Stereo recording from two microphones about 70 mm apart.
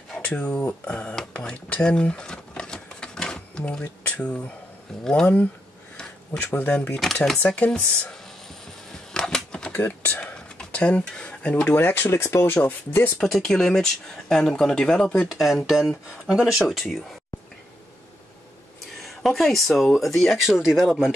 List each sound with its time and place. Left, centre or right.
0.5 s speech: centre
1.3 s a sound: centre
4.0 s speech: centre
6.5 s speech: left
9.1 s typewriter: centre
9.7 s typing: left
10.2 s a sound: centre
11.6 s speech: left
12.6 s speech: left
13.2 s speech: centre
15.2 s speech: centre
18.9 s speech: centre